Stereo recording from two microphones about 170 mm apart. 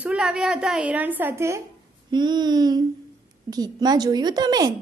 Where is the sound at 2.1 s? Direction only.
25° right (ahead or behind).